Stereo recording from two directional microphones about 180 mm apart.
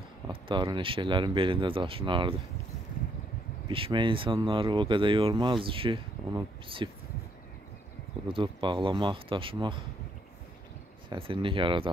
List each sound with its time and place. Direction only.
0.3 s speech: 25° right (ahead or behind)
3.6 s speech: 30° right (ahead or behind)
8.3 s speech: 30° right (ahead or behind)
11.1 s speech: 30° right (ahead or behind)